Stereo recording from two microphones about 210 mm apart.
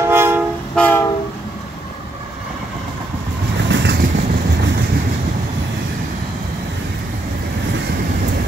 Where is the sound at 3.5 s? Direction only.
60° right (ahead or behind).